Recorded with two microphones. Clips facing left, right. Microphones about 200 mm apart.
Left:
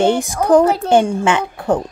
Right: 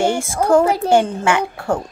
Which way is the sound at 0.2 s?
15° left (ahead or behind).